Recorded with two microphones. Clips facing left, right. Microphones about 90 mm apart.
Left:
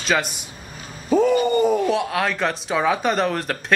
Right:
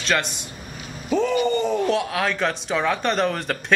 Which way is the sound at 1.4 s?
10° left (ahead or behind).